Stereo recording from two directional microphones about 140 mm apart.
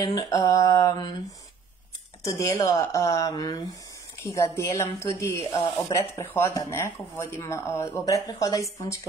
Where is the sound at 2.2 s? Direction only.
20° left (ahead or behind).